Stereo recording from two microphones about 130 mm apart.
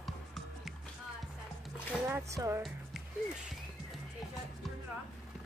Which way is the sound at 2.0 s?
20° right (ahead or behind).